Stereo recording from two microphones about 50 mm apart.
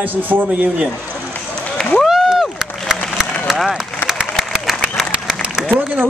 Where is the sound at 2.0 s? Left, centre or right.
Centre.